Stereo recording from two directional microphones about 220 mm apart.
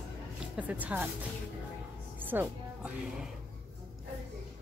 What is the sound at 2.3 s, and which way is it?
Music, 5° right (ahead or behind).